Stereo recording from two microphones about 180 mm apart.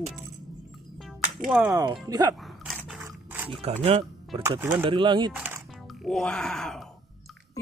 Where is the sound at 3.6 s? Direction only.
35° right (ahead or behind).